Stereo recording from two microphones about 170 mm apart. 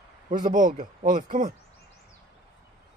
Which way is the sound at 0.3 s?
50° right (ahead or behind).